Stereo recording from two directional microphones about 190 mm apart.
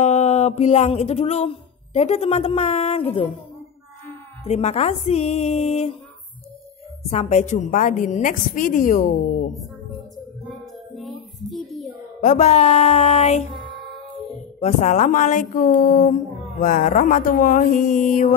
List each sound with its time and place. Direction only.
0.0 s music: 35° left (ahead or behind)
4.5 s speech: 35° left (ahead or behind)
7.1 s speech: 35° left (ahead or behind)
11.0 s child singing: centre (ahead or behind)
12.2 s speech: 40° left (ahead or behind)